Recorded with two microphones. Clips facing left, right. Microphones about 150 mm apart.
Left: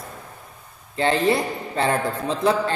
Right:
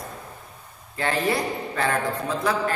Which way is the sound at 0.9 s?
25° left (ahead or behind).